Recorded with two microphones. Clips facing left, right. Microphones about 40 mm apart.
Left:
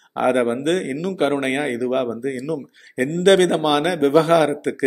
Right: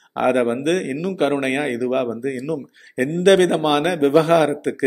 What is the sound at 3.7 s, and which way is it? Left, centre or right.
Speech, right.